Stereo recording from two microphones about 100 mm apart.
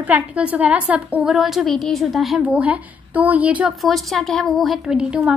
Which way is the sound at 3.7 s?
Centre (ahead or behind).